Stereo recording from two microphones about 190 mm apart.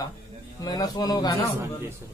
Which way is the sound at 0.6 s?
20° left (ahead or behind).